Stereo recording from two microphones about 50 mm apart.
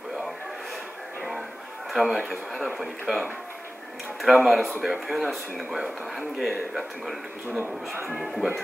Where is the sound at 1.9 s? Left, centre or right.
Centre.